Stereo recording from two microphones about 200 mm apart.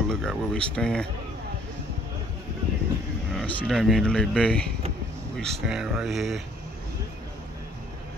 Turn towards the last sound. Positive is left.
turn(degrees=0)  # may be behind; listen again after turning